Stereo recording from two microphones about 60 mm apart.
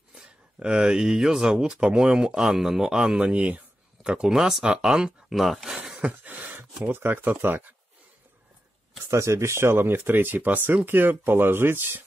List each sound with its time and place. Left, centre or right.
0.1 s speech: centre
5.3 s speech: centre
5.9 s a sound: right
6.9 s speech: right
9.1 s speech: right